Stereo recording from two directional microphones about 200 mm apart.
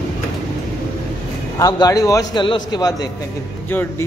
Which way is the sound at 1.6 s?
20° left (ahead or behind).